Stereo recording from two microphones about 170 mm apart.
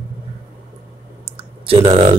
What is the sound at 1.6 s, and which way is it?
Speech, 35° right (ahead or behind).